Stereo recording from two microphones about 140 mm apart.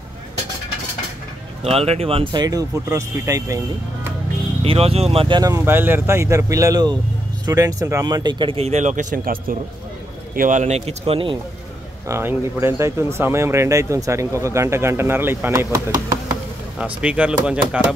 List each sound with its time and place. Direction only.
1.6 s speech: 45° right (ahead or behind); by 4.1 s 25° right (ahead or behind)
4.6 s a man's voice: 45° right (ahead or behind)
5.4 s speech: 20° right (ahead or behind); by 9.6 s 90° right
10.3 s a man's voice: 70° right (ahead or behind); by 11.3 s 40° right (ahead or behind)
12.1 s speech: 15° right (ahead or behind)
16.7 s speech: 5° right (ahead or behind)